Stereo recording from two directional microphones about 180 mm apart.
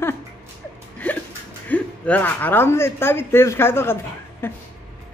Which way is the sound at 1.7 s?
10° left (ahead or behind).